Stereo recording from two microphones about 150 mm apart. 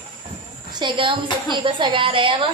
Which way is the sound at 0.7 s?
30° right (ahead or behind).